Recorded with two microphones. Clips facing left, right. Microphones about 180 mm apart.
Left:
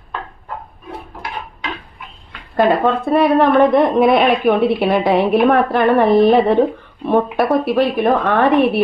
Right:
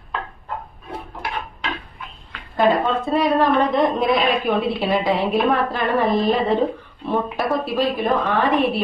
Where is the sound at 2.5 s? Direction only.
60° left (ahead or behind).